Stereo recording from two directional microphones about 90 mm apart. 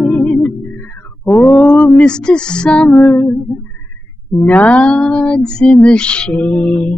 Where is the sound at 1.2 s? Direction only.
25° left (ahead or behind).